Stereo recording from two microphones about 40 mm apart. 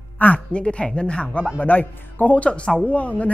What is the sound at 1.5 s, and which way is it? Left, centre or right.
Speech, left.